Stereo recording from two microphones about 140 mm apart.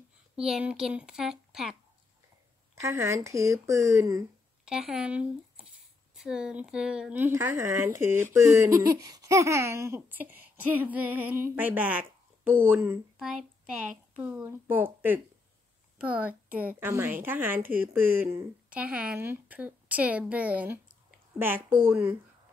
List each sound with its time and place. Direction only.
0.4 s a woman's voice: 5° right (ahead or behind)
2.7 s speech: 20° right (ahead or behind)
4.6 s speech: 5° right (ahead or behind)
13.2 s speech: 5° right (ahead or behind)